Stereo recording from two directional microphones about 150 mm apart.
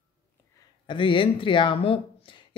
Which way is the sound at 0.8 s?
35° left (ahead or behind).